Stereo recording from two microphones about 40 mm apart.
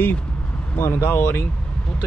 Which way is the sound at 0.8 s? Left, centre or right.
Left.